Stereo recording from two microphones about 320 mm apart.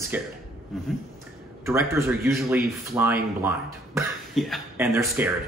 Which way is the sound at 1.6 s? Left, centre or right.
Centre.